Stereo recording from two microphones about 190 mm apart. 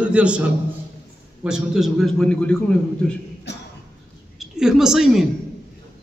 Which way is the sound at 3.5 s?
65° left (ahead or behind).